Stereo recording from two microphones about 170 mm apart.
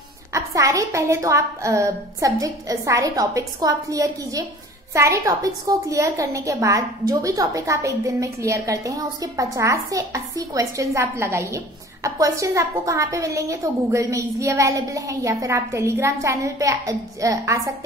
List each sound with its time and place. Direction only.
0.3 s a woman's voice: 20° right (ahead or behind)